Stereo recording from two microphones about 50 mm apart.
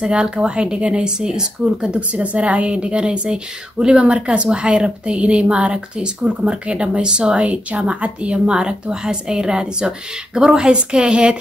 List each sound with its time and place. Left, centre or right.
0.1 s speech: centre